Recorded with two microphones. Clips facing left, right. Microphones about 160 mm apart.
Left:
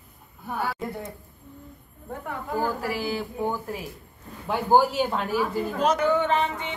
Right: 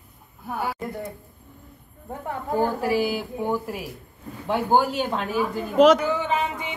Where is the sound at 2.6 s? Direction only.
15° right (ahead or behind).